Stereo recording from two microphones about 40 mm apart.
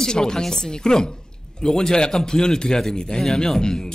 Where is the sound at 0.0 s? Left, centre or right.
Centre.